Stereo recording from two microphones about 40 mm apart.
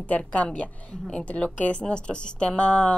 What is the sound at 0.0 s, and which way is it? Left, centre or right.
Speech, left.